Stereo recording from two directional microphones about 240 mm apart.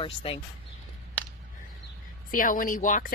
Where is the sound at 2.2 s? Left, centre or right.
Left.